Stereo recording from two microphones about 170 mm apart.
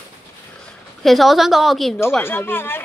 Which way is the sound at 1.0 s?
Centre (ahead or behind).